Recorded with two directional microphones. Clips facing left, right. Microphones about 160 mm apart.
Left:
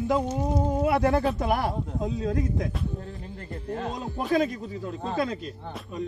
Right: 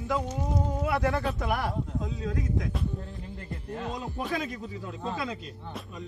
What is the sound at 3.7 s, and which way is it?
A man's voice, 40° left (ahead or behind).